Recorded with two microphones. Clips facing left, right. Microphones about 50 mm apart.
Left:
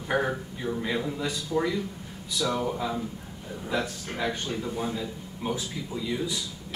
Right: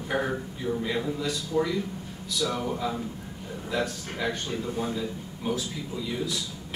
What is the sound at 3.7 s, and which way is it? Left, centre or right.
A man's voice, centre.